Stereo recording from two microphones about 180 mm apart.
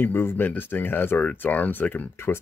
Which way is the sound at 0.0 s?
10° left (ahead or behind).